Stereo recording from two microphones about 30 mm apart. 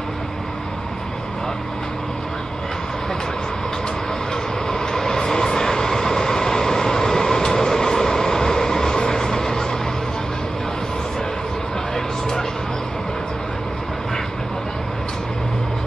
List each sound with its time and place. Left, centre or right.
4.6 s vehicle: centre